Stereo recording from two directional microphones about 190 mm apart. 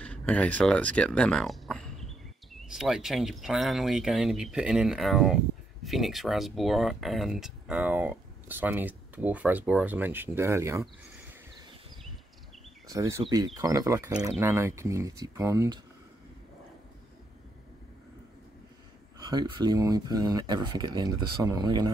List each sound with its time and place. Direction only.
0.0 s speech: 5° left (ahead or behind); by 10.9 s 15° right (ahead or behind)
12.8 s speech: 20° right (ahead or behind)
19.1 s speech: 20° right (ahead or behind)